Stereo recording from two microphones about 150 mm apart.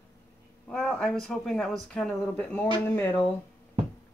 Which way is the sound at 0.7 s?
5° left (ahead or behind).